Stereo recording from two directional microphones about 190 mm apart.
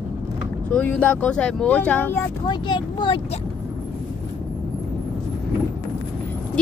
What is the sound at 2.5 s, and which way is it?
Speech, 25° left (ahead or behind).